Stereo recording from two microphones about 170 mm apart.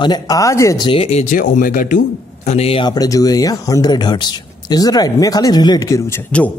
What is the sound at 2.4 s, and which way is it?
Speech, 35° left (ahead or behind).